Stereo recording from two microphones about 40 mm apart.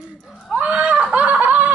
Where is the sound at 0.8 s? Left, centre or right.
Right.